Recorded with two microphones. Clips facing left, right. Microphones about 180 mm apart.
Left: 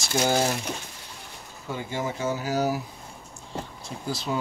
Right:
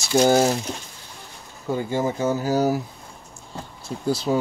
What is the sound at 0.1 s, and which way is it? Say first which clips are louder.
Speech: right 7 dB; 40° right (ahead or behind).